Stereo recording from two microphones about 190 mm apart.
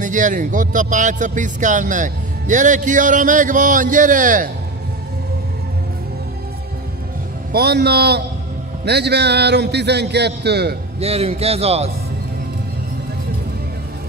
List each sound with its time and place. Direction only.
0.0 s speech: 40° right (ahead or behind)
7.5 s a man's voice: 60° right (ahead or behind)
11.0 s speech: 30° right (ahead or behind)